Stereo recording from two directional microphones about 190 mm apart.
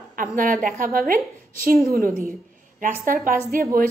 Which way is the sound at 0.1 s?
45° right (ahead or behind).